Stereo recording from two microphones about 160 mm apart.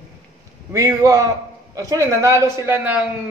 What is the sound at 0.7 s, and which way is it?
A woman's voice, 20° right (ahead or behind).